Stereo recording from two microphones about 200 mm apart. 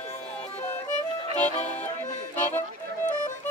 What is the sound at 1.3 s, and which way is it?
Music, 35° left (ahead or behind).